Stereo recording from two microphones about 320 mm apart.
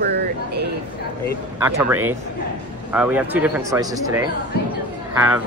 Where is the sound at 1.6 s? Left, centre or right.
Centre.